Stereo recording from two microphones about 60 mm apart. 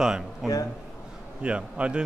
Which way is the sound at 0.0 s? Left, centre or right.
Centre.